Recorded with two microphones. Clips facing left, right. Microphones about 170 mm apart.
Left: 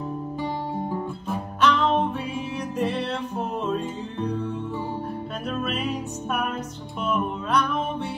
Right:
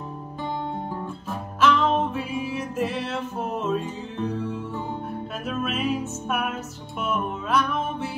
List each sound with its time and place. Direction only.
1.6 s music: centre (ahead or behind)
5.5 s music: 5° right (ahead or behind)